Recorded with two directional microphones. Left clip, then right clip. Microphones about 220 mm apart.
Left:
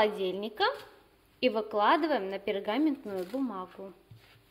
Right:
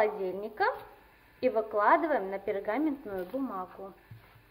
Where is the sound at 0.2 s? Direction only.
5° left (ahead or behind).